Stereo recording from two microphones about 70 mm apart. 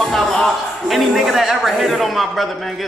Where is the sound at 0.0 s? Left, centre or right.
Centre.